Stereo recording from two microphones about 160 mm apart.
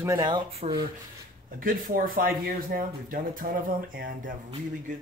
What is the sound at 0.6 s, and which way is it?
Speech, 35° right (ahead or behind).